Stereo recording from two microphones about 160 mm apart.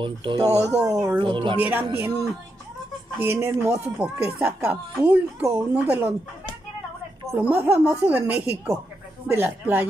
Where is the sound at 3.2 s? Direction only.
15° right (ahead or behind).